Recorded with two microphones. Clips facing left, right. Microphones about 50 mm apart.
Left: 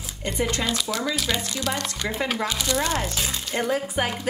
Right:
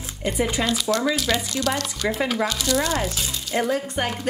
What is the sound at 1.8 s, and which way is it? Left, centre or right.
Speech, centre.